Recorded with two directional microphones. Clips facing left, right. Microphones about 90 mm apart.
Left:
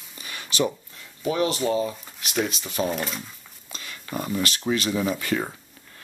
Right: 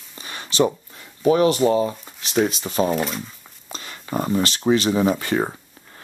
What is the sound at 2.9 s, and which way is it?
Speech, centre (ahead or behind).